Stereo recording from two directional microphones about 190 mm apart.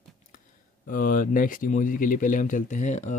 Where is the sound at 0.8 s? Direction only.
45° left (ahead or behind).